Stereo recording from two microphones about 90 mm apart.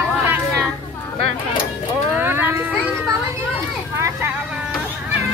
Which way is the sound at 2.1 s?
25° right (ahead or behind).